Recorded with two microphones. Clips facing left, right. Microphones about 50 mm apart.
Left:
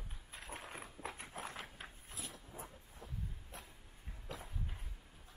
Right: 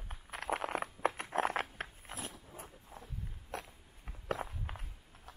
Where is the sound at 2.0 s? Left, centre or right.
Right.